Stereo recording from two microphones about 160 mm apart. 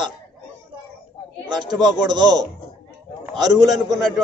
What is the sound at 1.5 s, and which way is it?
Speech, 25° right (ahead or behind).